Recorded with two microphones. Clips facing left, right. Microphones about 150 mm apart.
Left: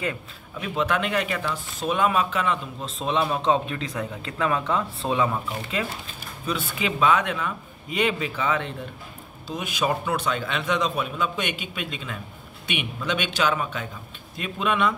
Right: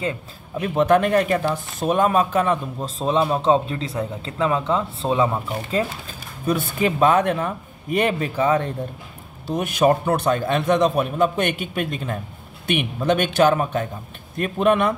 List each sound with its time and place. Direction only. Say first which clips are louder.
0.6 s speech: right 8 dB; 45° right (ahead or behind)
6.4 s speech: right 7 dB; 50° right (ahead or behind)
9.5 s speech: right 8 dB; 55° right (ahead or behind)